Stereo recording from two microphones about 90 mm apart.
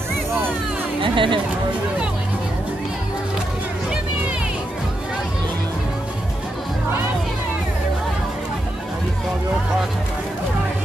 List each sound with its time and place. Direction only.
1.0 s speech: 70° right (ahead or behind)